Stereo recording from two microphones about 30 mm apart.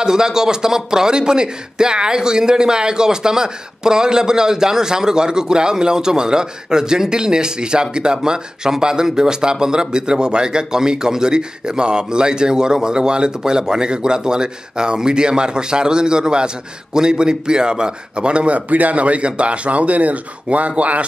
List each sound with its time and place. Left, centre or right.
0.0 s speech: right
18.7 s speech: right